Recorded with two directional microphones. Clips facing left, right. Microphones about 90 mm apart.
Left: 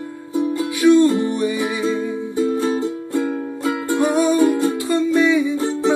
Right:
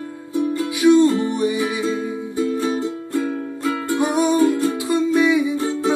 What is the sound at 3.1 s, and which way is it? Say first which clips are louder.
Music: left 1 dB; 20° left (ahead or behind).